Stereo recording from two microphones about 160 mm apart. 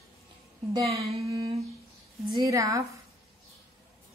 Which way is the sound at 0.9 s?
40° right (ahead or behind).